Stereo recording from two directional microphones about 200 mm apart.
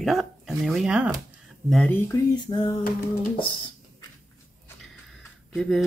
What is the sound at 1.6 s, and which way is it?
Speech, 5° left (ahead or behind).